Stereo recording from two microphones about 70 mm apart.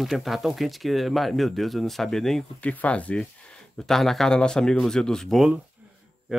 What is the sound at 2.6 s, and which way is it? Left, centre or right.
Speech, left.